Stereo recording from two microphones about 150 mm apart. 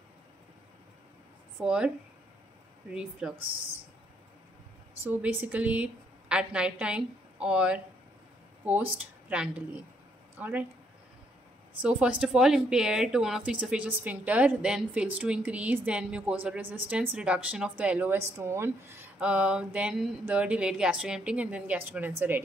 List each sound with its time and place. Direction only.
1.6 s a woman's voice: 10° right (ahead or behind)
2.9 s speech: 5° right (ahead or behind)
5.0 s a woman's voice: 15° right (ahead or behind)
10.4 s a woman's voice: 10° right (ahead or behind)
11.8 s a woman's voice: 10° right (ahead or behind)